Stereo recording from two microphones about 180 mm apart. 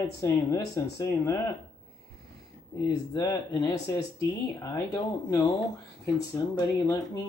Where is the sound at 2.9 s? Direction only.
20° left (ahead or behind).